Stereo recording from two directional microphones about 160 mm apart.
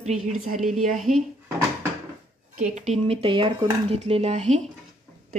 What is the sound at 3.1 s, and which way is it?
A woman's voice, 35° right (ahead or behind).